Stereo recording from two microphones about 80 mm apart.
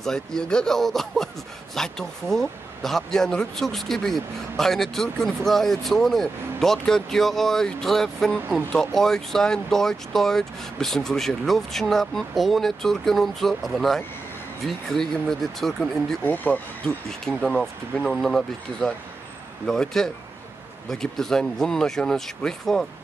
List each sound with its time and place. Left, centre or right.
0.0 s speech: centre
16.3 s speech: left
17.2 s speech: centre